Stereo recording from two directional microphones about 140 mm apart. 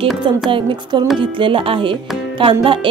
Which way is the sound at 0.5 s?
35° right (ahead or behind).